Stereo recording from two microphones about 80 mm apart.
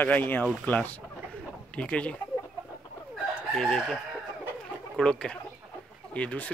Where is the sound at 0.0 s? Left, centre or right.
Left.